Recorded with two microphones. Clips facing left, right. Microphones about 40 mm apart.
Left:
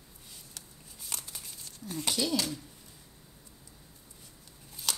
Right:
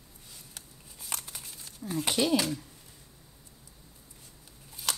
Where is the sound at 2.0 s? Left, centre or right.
Right.